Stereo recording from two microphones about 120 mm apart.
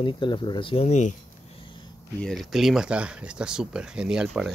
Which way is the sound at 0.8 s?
75° left (ahead or behind).